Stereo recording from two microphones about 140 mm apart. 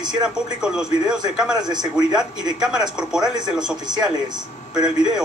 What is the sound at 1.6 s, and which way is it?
Speech, 30° right (ahead or behind).